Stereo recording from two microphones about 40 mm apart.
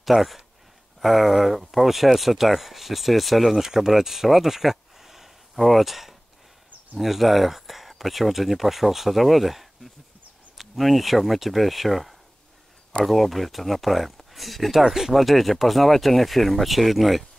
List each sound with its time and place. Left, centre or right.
0.0 s speech: centre